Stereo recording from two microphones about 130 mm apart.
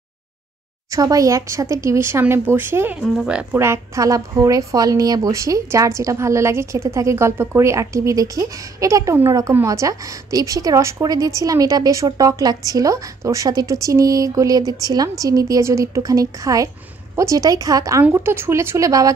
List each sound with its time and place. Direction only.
0.9 s a woman's voice: 25° right (ahead or behind)
3.0 s speech: 5° right (ahead or behind)
3.5 s a woman's voice: 20° right (ahead or behind)